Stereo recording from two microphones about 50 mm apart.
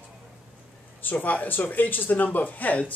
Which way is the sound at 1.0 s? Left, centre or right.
Left.